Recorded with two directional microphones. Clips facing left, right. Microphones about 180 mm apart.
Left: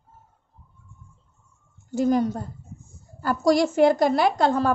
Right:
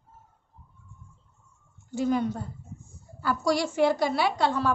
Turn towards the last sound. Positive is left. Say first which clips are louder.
# left 5 dB
turn(degrees=45)  # may be behind; listen again after turning